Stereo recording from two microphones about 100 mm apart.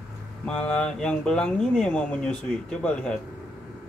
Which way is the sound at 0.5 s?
10° left (ahead or behind).